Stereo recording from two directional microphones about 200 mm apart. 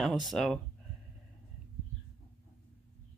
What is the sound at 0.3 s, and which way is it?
Speech, centre (ahead or behind).